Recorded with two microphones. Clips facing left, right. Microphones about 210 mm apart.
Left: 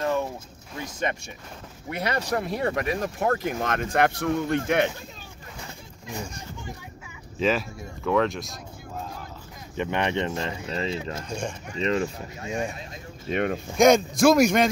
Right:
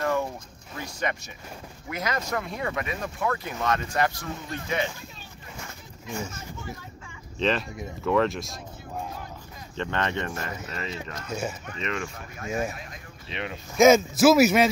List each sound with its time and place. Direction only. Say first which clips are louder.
0.0 s a sound: left 1 dB; 15° left (ahead or behind)
0.8 s speech: left 2 dB; 25° left (ahead or behind); by 3.3 s 40° left (ahead or behind)
3.4 s speech: left 1 dB; 55° left (ahead or behind)
7.3 s a man's voice: left 2 dB; 5° left (ahead or behind)
9.8 s speech: left 3 dB; 15° left (ahead or behind); by 11.2 s 30° left (ahead or behind)
11.2 s a man's voice: even; 5° right (ahead or behind)
11.7 s speech: left 7 dB; 35° left (ahead or behind)
13.3 s speech: left 9 dB; 50° left (ahead or behind)
13.7 s a man's voice: right 1 dB; 5° right (ahead or behind)